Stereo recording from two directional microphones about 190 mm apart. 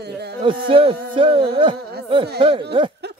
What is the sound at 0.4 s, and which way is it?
A man's voice, 25° right (ahead or behind).